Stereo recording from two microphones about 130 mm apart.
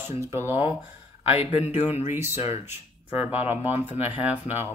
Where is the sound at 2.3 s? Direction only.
55° left (ahead or behind).